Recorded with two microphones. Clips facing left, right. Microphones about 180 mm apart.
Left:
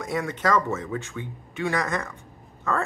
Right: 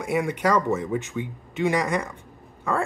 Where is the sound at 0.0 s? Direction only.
10° right (ahead or behind).